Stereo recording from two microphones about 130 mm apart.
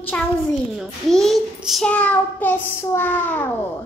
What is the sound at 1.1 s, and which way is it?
A child's voice, centre (ahead or behind).